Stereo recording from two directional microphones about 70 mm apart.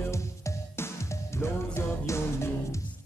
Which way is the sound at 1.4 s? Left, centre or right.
Left.